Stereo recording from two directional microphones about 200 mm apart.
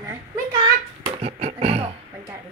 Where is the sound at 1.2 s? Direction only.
30° right (ahead or behind).